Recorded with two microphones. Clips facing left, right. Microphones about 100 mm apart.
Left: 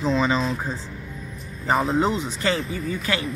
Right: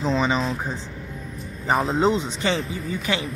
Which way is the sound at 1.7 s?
Centre (ahead or behind).